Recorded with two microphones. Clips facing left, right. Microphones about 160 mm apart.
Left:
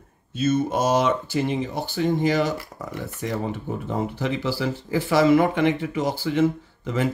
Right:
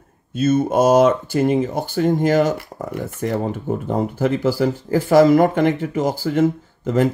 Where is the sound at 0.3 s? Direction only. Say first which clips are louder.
Right 5 dB; 50° right (ahead or behind).